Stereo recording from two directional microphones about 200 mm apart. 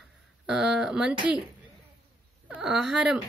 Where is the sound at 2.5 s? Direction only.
5° right (ahead or behind).